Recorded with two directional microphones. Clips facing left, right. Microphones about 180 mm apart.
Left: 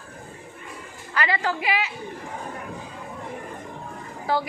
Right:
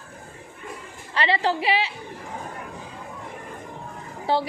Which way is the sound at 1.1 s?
30° right (ahead or behind).